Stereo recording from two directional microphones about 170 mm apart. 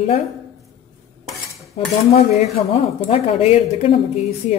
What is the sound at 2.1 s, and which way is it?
Speech, 40° left (ahead or behind).